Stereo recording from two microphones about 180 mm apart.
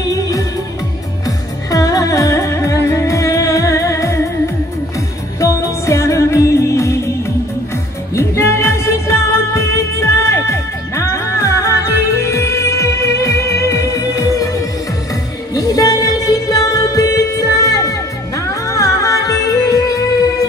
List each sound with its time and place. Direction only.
0.1 s music: 20° left (ahead or behind)
5.4 s music: 15° left (ahead or behind)